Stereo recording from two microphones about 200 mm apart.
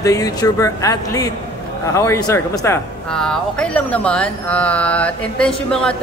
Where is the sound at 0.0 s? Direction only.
15° left (ahead or behind).